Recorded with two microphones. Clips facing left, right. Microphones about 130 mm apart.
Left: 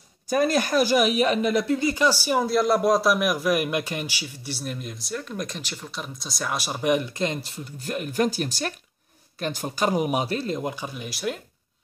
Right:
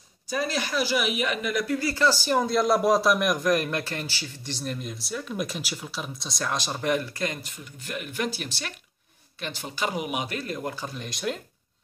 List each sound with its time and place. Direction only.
0.3 s speech: 50° left (ahead or behind); by 11.4 s 5° left (ahead or behind)